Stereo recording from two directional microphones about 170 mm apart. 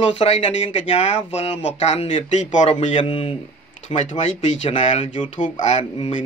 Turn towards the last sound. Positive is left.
turn(degrees=40)  # may be behind; listen again after turning